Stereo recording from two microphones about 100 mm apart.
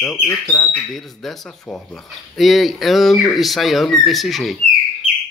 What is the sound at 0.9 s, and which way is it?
Speech, 5° left (ahead or behind).